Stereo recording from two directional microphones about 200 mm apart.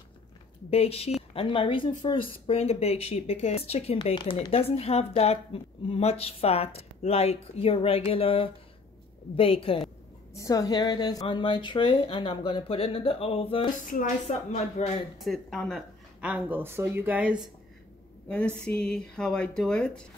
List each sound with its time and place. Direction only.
0.7 s speech: 30° left (ahead or behind)
10.3 s speech: 15° left (ahead or behind)
13.8 s speech: 40° left (ahead or behind)
15.1 s speech: centre (ahead or behind)
18.3 s speech: 5° left (ahead or behind)